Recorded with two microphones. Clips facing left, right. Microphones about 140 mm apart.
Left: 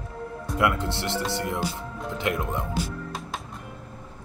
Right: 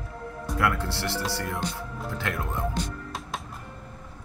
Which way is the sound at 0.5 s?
20° left (ahead or behind).